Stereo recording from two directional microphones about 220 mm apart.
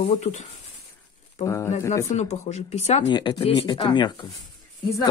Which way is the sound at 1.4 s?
10° left (ahead or behind).